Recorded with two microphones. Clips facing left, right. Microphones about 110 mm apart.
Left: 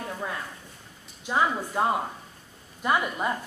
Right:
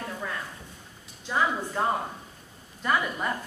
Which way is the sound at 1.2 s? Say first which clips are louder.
Left 2 dB; 15° left (ahead or behind).